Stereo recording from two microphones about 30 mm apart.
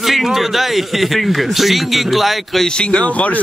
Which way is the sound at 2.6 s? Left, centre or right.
Left.